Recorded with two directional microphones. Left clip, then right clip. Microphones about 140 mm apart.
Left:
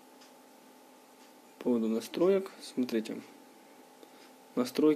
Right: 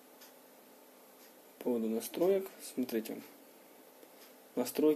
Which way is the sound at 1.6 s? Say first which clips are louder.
Left 3 dB; 30° left (ahead or behind).